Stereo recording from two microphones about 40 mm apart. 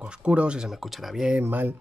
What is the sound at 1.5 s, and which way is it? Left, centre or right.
Speech, right.